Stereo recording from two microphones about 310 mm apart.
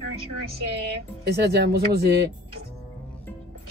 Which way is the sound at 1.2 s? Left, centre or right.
Right.